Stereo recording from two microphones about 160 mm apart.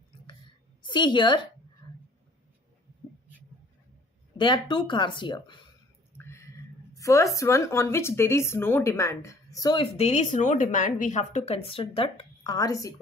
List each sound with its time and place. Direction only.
0.8 s speech: 30° left (ahead or behind)
1.8 s a sound: 30° left (ahead or behind)
4.4 s speech: 30° left (ahead or behind)
6.1 s speech: 15° left (ahead or behind)
9.8 s a woman's voice: 40° left (ahead or behind)
12.5 s speech: 20° left (ahead or behind)